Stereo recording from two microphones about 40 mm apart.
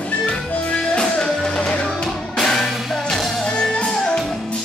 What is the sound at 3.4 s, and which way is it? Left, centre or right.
Music, left.